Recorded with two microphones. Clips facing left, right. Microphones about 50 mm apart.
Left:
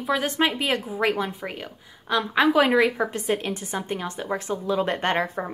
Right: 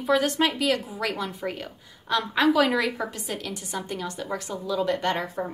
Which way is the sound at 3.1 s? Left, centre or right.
Left.